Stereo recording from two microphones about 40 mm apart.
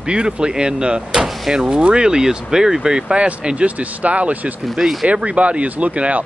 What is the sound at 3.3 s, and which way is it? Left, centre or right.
Speech, right.